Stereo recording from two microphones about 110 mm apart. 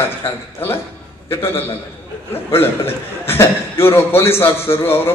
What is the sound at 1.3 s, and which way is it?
A man's voice, 20° left (ahead or behind).